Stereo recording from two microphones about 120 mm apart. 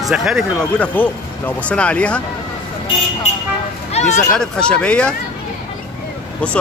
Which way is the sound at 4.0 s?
60° left (ahead or behind).